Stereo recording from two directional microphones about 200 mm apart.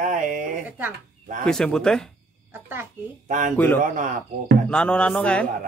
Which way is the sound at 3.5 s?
10° left (ahead or behind).